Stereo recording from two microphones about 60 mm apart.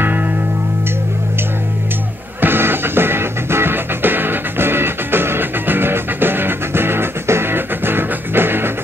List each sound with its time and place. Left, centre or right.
0.0 s music: right
2.4 s music: right